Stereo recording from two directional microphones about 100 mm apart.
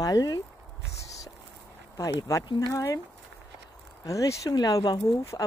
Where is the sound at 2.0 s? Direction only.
35° left (ahead or behind).